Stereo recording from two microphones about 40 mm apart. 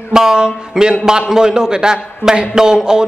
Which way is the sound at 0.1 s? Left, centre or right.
Centre.